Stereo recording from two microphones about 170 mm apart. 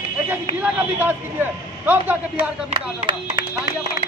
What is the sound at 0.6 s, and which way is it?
A man's voice, 10° right (ahead or behind).